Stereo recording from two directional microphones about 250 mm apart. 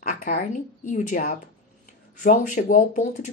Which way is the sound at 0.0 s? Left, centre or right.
Left.